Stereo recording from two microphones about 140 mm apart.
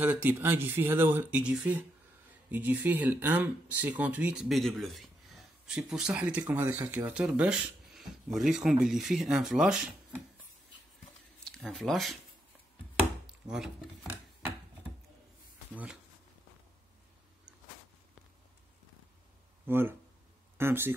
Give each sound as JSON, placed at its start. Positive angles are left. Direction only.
{"t": 0.0, "sound": "speech", "side_deg": -10}
{"t": 11.4, "sound": "speech", "side_deg": 0}
{"t": 13.3, "sound": "speech", "side_deg": -5}
{"t": 15.7, "sound": "speech", "side_deg": -10}
{"t": 19.6, "sound": "speech", "side_deg": -15}